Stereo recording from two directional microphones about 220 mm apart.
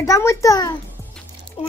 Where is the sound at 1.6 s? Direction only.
30° left (ahead or behind).